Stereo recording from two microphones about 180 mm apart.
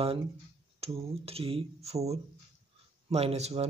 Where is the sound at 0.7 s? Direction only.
35° right (ahead or behind).